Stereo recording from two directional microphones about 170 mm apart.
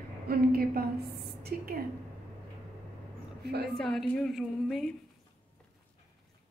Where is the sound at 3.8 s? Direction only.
5° left (ahead or behind).